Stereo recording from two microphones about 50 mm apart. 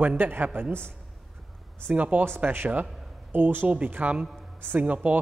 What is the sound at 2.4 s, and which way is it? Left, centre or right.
A man's voice, right.